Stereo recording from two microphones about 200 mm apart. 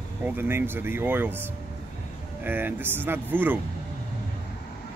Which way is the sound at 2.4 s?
10° right (ahead or behind).